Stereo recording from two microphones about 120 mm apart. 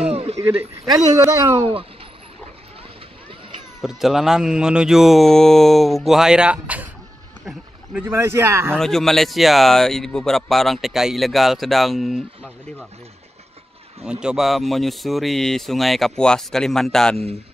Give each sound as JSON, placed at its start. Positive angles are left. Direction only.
{"t": 0.0, "sound": "a sound", "side_deg": -60}
{"t": 1.6, "sound": "speech", "side_deg": -50}
{"t": 3.8, "sound": "speech", "side_deg": -5}
{"t": 8.1, "sound": "speech", "side_deg": -20}
{"t": 8.7, "sound": "speech", "side_deg": 5}
{"t": 14.2, "sound": "speech", "side_deg": 0}